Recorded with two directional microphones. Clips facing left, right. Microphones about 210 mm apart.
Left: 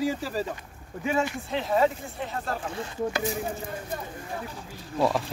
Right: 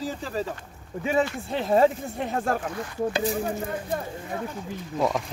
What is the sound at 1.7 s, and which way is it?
Speech, 50° right (ahead or behind).